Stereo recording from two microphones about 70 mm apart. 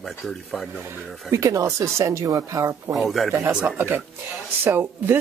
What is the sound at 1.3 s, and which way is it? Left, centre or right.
Speech, right.